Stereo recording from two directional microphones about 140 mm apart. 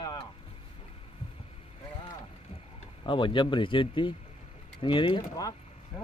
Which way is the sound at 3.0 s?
35° left (ahead or behind).